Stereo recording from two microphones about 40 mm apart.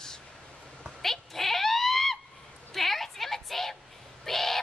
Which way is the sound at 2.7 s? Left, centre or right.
Centre.